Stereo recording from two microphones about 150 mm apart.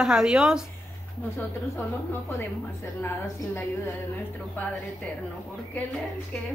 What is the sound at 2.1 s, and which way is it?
A woman's voice, 15° left (ahead or behind).